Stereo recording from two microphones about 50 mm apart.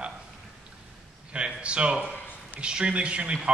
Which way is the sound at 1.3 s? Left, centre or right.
Right.